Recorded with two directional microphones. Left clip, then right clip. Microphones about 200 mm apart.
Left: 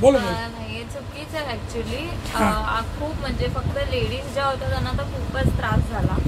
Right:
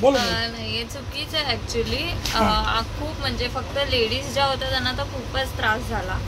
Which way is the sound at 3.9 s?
5° left (ahead or behind).